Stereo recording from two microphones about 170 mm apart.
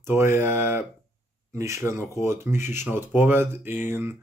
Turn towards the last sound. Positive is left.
turn(degrees=-15)  # may be behind; listen again after turning